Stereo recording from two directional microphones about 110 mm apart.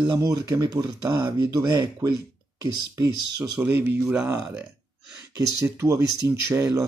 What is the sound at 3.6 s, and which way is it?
Speech, 15° right (ahead or behind).